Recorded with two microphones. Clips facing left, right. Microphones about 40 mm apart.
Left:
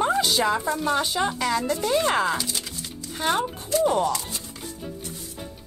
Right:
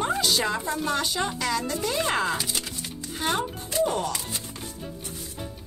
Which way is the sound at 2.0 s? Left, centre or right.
Centre.